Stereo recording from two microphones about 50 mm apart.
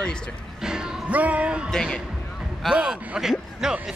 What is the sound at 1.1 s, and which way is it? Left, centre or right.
Music, right.